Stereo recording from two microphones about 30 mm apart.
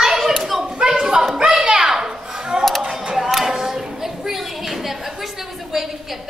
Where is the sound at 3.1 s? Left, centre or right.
Centre.